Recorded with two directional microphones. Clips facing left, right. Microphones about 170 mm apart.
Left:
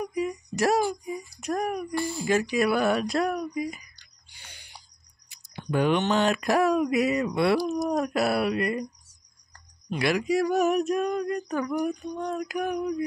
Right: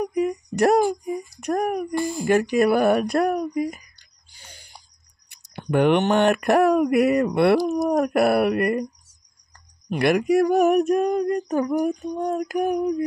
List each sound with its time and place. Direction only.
0.0 s speech: 55° right (ahead or behind)
4.3 s a sound: 40° right (ahead or behind)
5.3 s speech: 60° right (ahead or behind)
9.8 s speech: 55° right (ahead or behind)